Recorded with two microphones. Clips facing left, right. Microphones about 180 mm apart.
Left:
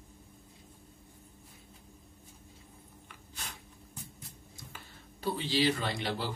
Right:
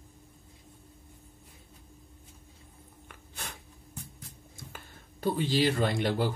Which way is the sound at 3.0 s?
55° right (ahead or behind).